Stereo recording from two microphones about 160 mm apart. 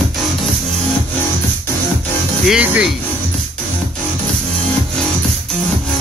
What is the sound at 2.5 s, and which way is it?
Music, 5° right (ahead or behind).